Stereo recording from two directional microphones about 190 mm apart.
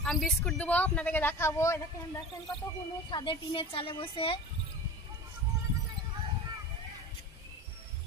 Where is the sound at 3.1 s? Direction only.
25° left (ahead or behind).